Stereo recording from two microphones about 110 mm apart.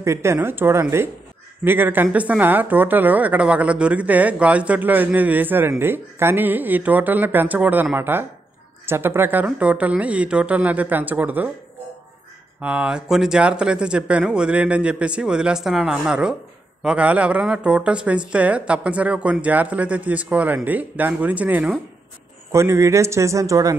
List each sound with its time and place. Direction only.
0.0 s speech: 25° right (ahead or behind)
12.5 s speech: 10° right (ahead or behind)
22.5 s speech: 25° right (ahead or behind)